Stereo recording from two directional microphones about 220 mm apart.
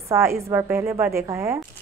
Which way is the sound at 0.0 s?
10° right (ahead or behind).